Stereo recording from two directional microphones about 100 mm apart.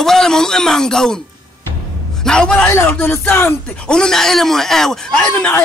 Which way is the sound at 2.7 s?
25° left (ahead or behind).